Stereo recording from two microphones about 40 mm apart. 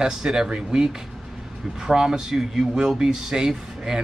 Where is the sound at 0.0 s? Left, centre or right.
Centre.